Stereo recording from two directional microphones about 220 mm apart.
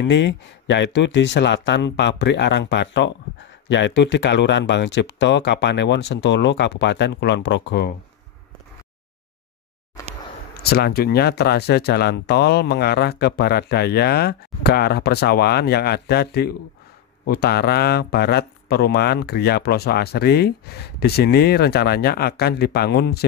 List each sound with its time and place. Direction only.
0.0 s speech: 55° left (ahead or behind)
10.6 s speech: 45° left (ahead or behind)